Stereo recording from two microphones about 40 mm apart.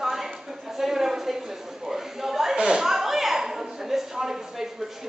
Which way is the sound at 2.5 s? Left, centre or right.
Right.